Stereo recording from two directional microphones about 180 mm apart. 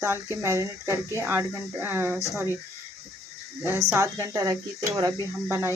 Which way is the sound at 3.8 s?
15° right (ahead or behind).